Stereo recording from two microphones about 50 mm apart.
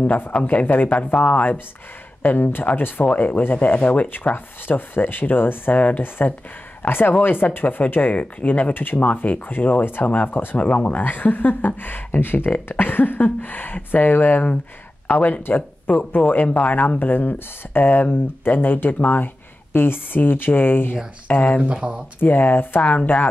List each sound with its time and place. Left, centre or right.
0.0 s speech: left
0.8 s speech: left
2.2 s speech: left
21.3 s speech: left
21.6 s speech: right
22.2 s speech: left
22.8 s speech: left